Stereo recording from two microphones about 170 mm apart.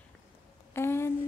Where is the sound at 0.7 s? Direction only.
15° left (ahead or behind).